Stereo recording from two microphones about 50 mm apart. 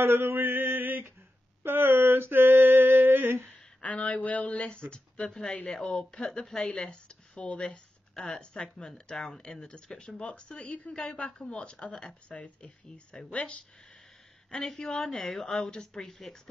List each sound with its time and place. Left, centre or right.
0.0 s male singing: right
1.6 s a sound: right
3.8 s speech: left
6.9 s speech: left
8.1 s speech: centre; by 13.6 s left
14.6 s speech: centre